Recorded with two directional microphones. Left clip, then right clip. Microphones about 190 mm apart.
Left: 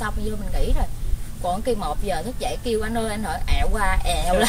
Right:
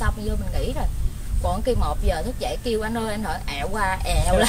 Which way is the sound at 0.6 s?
Centre (ahead or behind).